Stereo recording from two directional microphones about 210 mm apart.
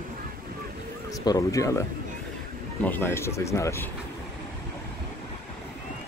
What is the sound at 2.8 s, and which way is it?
Speech, 10° left (ahead or behind).